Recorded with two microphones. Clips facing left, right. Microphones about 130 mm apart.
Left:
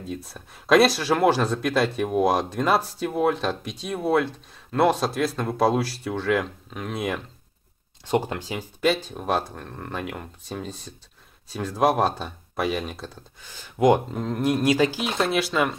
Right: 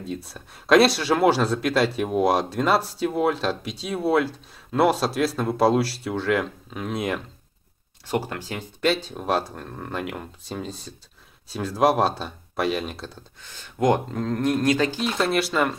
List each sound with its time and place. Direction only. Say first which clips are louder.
0.0 s speech: right 1 dB; centre (ahead or behind)
8.1 s speech: left 3 dB; 20° left (ahead or behind)
8.5 s speech: even; centre (ahead or behind)
13.4 s speech: left 3 dB; 10° left (ahead or behind)